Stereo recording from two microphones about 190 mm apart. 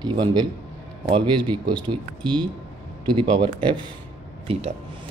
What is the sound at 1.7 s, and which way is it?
Speech, 5° left (ahead or behind).